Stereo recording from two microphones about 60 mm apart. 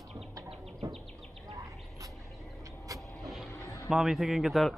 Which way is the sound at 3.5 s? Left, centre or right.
Left.